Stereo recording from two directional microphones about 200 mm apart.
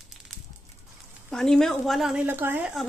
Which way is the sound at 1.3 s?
5° left (ahead or behind).